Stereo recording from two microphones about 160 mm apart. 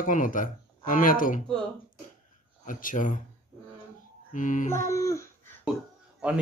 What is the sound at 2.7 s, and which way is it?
Speech, 55° left (ahead or behind).